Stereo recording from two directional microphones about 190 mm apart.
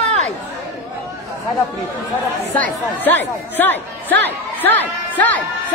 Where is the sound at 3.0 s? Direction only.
10° left (ahead or behind).